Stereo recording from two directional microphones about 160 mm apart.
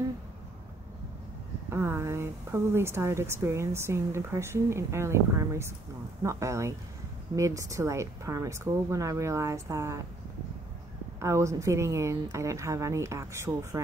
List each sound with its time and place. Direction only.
1.7 s speech: 15° right (ahead or behind)
11.1 s speech: 15° right (ahead or behind)